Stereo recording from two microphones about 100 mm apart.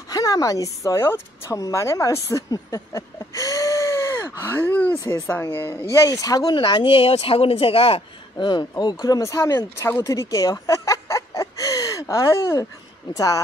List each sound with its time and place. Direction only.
0.1 s speech: 35° left (ahead or behind)
4.4 s gasp: 20° left (ahead or behind)
5.2 s speech: 20° left (ahead or behind)
5.9 s speech: 35° left (ahead or behind)
6.5 s speech: 50° left (ahead or behind); by 8.0 s 70° left (ahead or behind)
8.4 s speech: 45° left (ahead or behind)
9.0 s speech: 35° left (ahead or behind)